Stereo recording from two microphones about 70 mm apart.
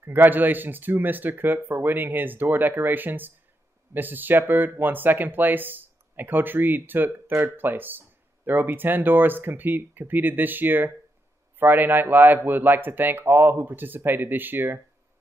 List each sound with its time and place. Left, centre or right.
0.0 s speech: right